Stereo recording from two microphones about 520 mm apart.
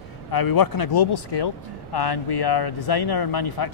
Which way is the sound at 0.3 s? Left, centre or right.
Left.